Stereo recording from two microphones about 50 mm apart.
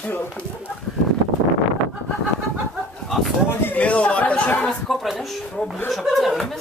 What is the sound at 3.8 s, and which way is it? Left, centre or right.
Speech, left.